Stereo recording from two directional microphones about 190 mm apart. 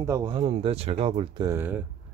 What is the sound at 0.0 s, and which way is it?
Speech, 20° right (ahead or behind).